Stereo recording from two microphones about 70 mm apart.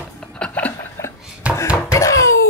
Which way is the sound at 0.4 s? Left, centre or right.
Left.